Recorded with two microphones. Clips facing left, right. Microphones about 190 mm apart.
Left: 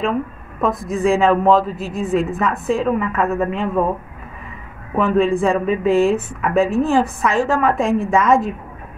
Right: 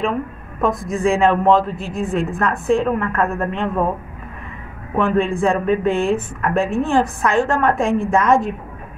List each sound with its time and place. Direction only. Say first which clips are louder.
0.6 s a woman's voice: even; centre (ahead or behind)
4.9 s a woman's voice: left 2 dB; centre (ahead or behind)